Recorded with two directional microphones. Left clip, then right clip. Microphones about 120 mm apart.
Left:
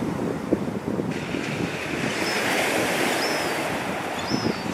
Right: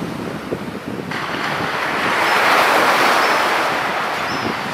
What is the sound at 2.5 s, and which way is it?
Vehicle, 15° left (ahead or behind).